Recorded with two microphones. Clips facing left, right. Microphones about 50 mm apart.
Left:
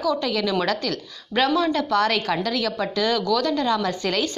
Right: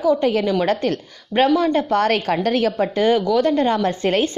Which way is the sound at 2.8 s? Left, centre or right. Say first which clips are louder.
Right 6 dB; right.